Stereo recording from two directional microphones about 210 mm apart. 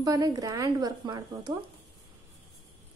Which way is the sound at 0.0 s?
15° right (ahead or behind).